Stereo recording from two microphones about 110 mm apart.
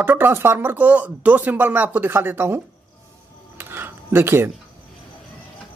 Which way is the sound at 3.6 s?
20° right (ahead or behind).